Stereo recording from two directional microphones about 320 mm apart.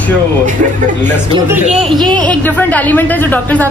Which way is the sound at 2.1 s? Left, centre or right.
Centre.